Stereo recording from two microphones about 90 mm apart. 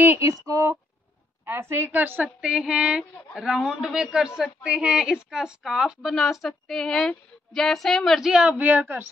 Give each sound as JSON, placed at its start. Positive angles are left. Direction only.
{"t": 0.2, "sound": "speech", "side_deg": -35}
{"t": 1.4, "sound": "a woman's voice", "side_deg": -25}
{"t": 8.3, "sound": "a woman's voice", "side_deg": -15}